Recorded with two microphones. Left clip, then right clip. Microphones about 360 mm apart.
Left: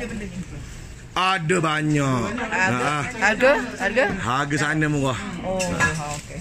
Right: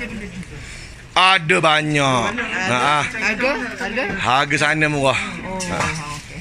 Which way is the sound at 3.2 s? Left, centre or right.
Left.